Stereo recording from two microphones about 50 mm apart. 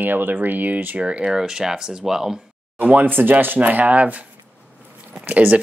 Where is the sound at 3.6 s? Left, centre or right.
Right.